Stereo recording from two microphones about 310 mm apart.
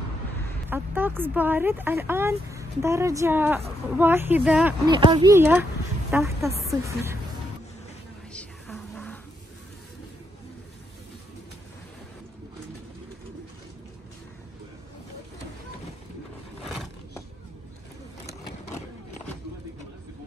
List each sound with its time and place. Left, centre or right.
0.7 s speech: centre
8.3 s music: centre